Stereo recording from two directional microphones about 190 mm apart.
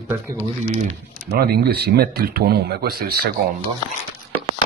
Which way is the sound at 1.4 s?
55° right (ahead or behind).